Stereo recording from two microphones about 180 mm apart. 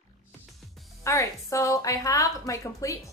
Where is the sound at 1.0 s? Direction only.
15° left (ahead or behind).